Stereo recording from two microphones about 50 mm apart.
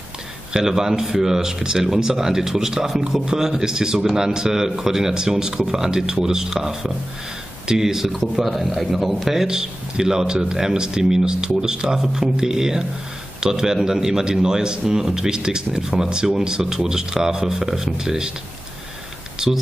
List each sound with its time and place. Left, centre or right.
0.5 s a man's voice: centre
8.1 s a man's voice: centre
19.3 s speech: centre